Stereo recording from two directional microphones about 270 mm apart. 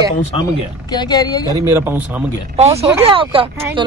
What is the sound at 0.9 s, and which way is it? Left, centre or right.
Speech, centre.